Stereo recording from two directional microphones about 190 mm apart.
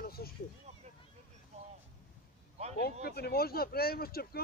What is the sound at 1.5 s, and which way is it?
Vehicle, 35° right (ahead or behind).